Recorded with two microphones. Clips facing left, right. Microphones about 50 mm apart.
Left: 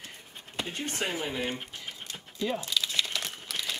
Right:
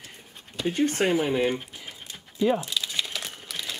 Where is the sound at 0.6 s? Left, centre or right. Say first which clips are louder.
Right 7 dB; left.